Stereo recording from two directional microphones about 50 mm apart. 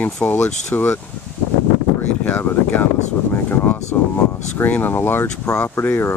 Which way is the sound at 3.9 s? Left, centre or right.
Left.